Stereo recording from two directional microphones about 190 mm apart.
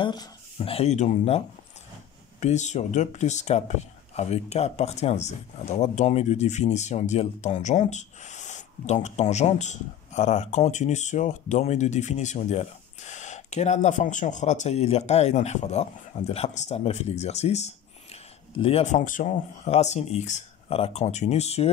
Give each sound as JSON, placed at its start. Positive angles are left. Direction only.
{"t": 0.0, "sound": "speech", "side_deg": 25}
{"t": 2.4, "sound": "speech", "side_deg": 40}